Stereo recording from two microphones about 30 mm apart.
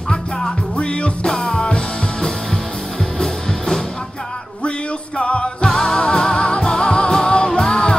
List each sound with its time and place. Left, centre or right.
0.7 s music: left
4.6 s music: left